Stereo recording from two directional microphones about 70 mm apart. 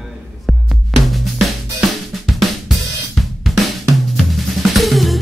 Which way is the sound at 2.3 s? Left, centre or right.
Centre.